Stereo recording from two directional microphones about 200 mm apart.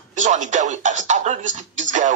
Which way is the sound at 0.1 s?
35° right (ahead or behind).